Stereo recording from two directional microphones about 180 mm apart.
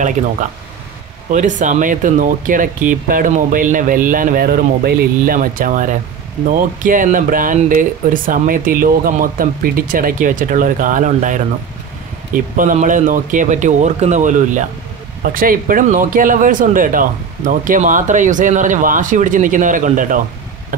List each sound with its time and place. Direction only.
1.3 s speech: 45° right (ahead or behind)
12.5 s speech: 45° right (ahead or behind)